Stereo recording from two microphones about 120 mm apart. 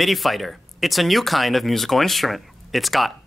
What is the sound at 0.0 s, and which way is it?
Speech, centre (ahead or behind).